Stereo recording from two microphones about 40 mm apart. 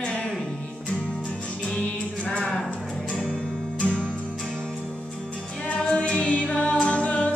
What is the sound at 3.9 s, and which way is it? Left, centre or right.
Music, centre.